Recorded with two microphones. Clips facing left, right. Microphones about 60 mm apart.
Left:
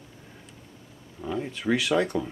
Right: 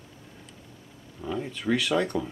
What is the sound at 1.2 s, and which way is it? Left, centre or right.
Speech, centre.